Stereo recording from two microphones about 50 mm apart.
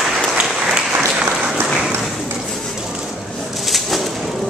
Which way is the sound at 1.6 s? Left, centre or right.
Centre.